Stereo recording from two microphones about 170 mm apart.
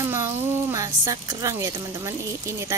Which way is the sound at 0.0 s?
15° right (ahead or behind).